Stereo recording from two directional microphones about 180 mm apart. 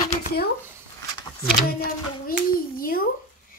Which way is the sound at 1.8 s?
55° left (ahead or behind).